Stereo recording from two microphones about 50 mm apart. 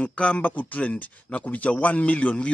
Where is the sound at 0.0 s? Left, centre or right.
Left.